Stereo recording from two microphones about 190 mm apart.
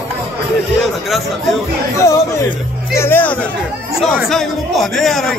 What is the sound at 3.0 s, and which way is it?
A man's voice, 10° left (ahead or behind).